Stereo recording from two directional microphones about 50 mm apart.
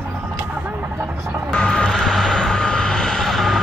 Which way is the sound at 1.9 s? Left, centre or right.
Centre.